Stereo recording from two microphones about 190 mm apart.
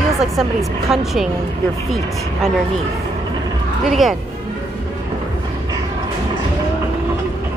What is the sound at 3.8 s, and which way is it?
Speech, centre (ahead or behind).